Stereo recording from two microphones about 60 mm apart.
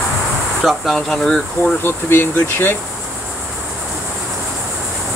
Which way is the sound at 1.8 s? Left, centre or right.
Left.